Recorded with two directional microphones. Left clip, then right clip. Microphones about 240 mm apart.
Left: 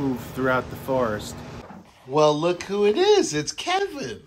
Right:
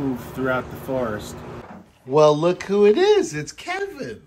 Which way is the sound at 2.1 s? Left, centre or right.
Centre.